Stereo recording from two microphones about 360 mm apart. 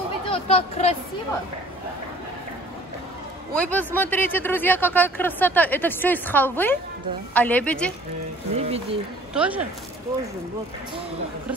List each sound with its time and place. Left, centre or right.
0.3 s speech: centre
3.5 s speech: centre
8.5 s speech: centre
9.3 s speech: centre